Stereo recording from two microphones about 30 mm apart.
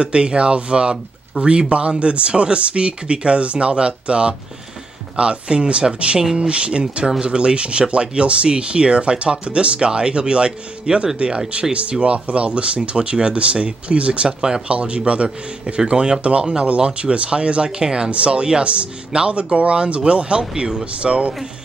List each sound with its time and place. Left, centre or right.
0.0 s speech: right
17.6 s speech: right
18.1 s speech: right
20.8 s speech: right